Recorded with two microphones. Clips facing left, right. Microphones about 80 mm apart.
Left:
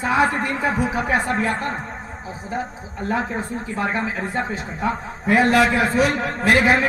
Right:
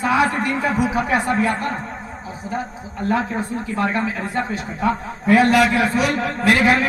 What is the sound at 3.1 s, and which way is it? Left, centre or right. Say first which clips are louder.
Speech: right 3 dB; centre.